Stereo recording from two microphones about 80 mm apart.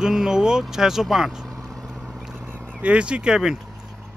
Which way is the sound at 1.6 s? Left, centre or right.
Centre.